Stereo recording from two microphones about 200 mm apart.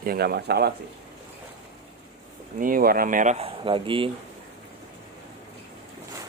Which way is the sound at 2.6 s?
45° right (ahead or behind).